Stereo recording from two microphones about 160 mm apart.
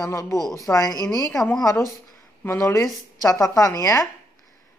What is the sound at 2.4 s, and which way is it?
A woman's voice, 15° left (ahead or behind).